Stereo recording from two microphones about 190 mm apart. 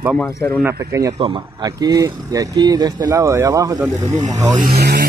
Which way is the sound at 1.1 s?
30° right (ahead or behind).